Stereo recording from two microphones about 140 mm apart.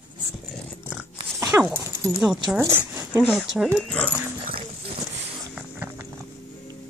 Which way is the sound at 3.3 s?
5° right (ahead or behind).